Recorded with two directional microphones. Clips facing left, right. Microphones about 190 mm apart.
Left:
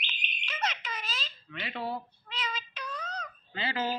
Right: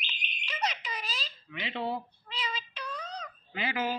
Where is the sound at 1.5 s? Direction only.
20° right (ahead or behind).